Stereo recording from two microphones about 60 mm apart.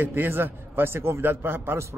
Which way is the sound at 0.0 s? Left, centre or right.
Right.